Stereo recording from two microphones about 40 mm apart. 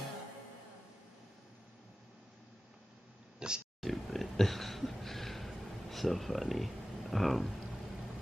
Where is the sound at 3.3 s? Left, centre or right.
Right.